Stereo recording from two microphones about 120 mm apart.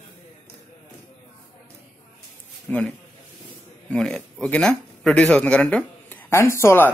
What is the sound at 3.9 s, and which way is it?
Speech, 5° left (ahead or behind).